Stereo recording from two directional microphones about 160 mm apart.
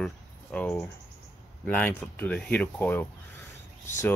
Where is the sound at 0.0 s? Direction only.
5° left (ahead or behind).